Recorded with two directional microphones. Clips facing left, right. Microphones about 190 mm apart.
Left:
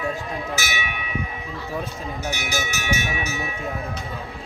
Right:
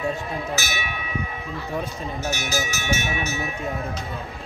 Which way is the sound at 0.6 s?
15° left (ahead or behind).